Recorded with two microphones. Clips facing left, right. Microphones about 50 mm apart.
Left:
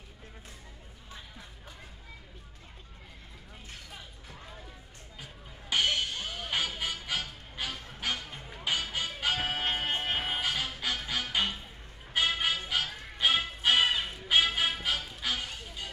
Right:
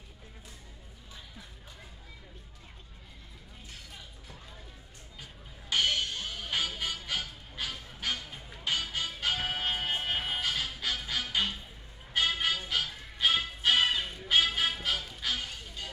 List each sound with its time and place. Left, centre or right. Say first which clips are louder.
5.2 s music: left 2 dB; centre
9.8 s music: left 1 dB; left
10.1 s music: left 1 dB; centre